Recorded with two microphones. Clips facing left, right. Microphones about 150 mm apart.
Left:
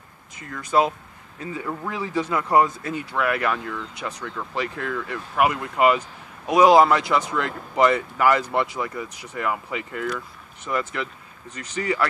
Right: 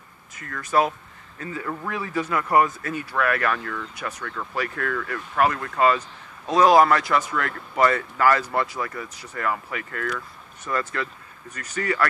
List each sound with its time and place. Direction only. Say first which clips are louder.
0.4 s speech: left 1 dB; 15° left (ahead or behind)